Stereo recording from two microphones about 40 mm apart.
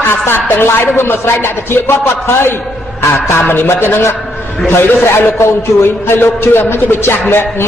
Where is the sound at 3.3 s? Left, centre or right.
Left.